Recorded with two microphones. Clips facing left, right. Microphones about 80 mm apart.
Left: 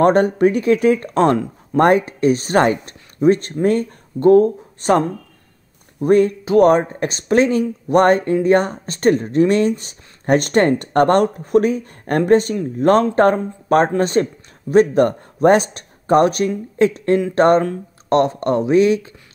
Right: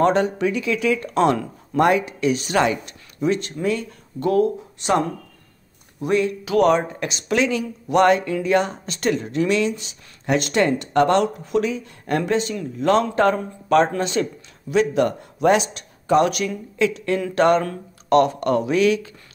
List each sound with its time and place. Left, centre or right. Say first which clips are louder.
0.0 s speech: left 5 dB; left